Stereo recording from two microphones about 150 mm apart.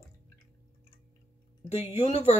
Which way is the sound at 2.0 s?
45° left (ahead or behind).